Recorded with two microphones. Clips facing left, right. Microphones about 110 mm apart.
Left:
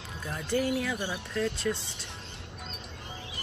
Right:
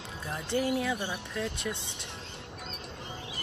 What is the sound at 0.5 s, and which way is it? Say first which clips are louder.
Speech: even; 25° right (ahead or behind).